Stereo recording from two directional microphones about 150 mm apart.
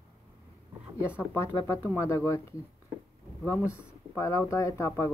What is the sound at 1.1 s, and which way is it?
Speech, 20° left (ahead or behind).